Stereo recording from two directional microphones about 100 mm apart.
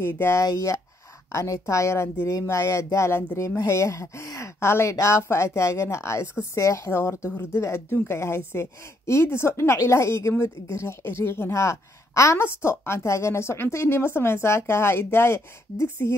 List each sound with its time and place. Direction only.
0.0 s a woman's voice: 25° left (ahead or behind)